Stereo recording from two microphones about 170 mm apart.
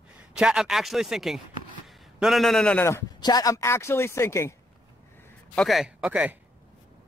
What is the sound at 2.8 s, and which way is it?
Speech, 20° left (ahead or behind).